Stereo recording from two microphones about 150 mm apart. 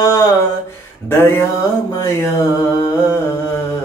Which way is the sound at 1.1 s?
15° left (ahead or behind).